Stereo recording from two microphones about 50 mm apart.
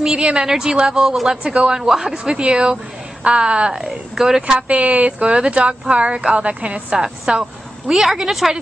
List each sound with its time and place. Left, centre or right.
0.0 s a woman's voice: centre
2.3 s a woman's voice: centre
3.8 s a woman's voice: centre
4.4 s a woman's voice: right
5.2 s a woman's voice: centre